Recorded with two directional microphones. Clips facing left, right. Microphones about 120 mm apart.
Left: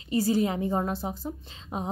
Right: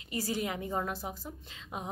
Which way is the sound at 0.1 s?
30° left (ahead or behind).